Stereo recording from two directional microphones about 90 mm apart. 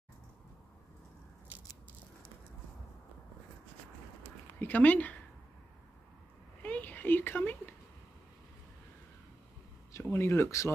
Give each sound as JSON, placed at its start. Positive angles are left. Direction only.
{"t": 4.6, "sound": "speech", "side_deg": 20}
{"t": 6.6, "sound": "a sound", "side_deg": 20}
{"t": 9.9, "sound": "speech", "side_deg": 30}